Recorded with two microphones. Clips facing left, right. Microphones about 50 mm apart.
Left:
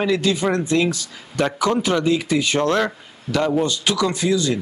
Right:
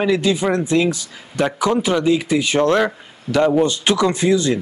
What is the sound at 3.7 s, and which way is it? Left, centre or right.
Speech, right.